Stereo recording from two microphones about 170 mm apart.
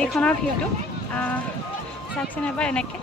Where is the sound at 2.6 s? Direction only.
5° left (ahead or behind).